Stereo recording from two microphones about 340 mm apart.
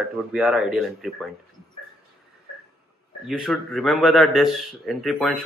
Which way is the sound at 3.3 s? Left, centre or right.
Centre.